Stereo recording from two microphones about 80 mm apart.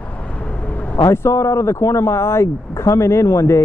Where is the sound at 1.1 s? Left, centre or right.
Left.